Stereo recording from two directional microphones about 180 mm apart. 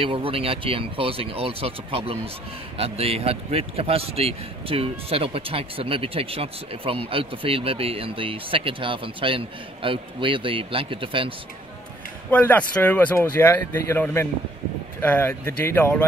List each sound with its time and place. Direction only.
0.0 s speech: 30° right (ahead or behind)
12.3 s speech: 10° left (ahead or behind)